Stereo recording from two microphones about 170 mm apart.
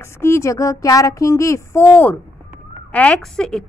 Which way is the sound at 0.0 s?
15° left (ahead or behind).